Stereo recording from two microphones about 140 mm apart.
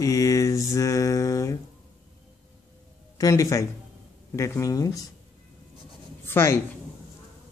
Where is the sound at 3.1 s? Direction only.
25° left (ahead or behind).